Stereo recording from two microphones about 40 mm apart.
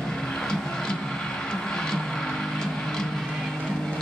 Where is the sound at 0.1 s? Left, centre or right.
Centre.